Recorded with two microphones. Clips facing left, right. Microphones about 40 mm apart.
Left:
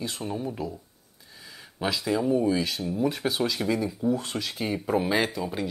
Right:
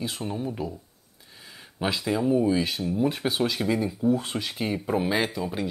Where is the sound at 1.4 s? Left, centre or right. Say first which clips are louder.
Right 1 dB; centre.